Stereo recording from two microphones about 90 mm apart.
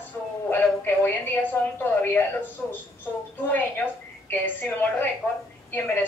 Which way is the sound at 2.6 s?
10° left (ahead or behind).